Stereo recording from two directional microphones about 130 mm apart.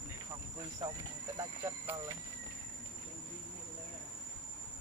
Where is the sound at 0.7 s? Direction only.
25° right (ahead or behind).